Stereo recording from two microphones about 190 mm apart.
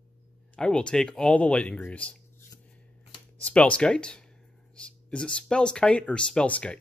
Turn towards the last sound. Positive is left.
turn(degrees=5)  # may be behind; listen again after turning